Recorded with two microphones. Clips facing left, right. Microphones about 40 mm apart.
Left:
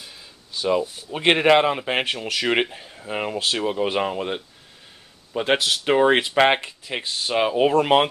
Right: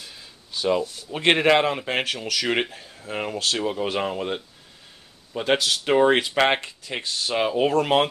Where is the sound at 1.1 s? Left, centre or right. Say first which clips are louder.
Left 2 dB; centre.